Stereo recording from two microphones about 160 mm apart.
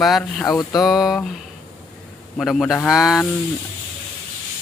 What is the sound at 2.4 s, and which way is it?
Speech, 5° left (ahead or behind).